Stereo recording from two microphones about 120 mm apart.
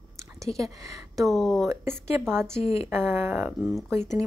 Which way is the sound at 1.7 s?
20° right (ahead or behind).